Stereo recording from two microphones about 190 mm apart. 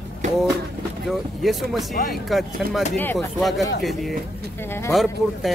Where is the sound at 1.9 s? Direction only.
45° left (ahead or behind).